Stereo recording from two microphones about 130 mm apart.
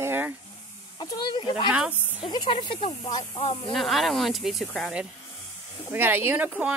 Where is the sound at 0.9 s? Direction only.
30° left (ahead or behind).